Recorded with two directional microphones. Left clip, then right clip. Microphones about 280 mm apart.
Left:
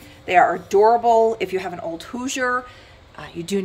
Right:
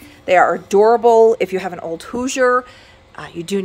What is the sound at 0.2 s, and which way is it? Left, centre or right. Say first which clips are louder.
A woman's voice: right 3 dB; centre.